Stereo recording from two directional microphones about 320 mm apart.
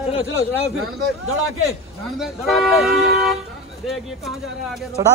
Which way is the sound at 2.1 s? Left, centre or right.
Centre.